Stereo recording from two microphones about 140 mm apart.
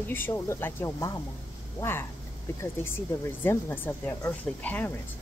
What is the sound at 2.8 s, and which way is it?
Speech, 15° left (ahead or behind).